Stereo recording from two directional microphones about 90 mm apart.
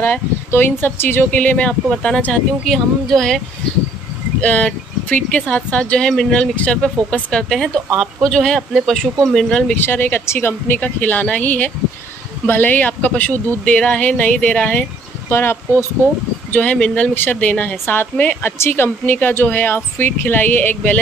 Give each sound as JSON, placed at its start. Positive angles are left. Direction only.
{"t": 0.0, "sound": "speech", "side_deg": 20}
{"t": 9.8, "sound": "speech", "side_deg": 20}
{"t": 15.2, "sound": "speech", "side_deg": 30}
{"t": 16.5, "sound": "speech", "side_deg": 10}